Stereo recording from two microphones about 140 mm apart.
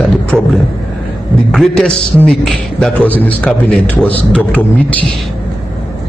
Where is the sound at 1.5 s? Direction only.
5° left (ahead or behind).